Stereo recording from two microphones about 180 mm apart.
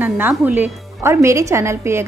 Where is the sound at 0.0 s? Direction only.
10° right (ahead or behind).